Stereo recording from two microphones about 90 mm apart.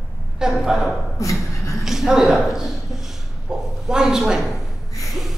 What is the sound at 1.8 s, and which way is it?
Speech, 5° right (ahead or behind).